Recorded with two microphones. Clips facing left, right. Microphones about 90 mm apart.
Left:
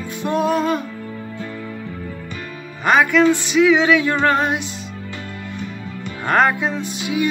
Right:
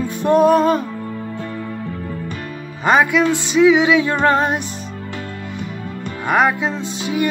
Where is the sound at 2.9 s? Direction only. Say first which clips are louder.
Even; 20° right (ahead or behind).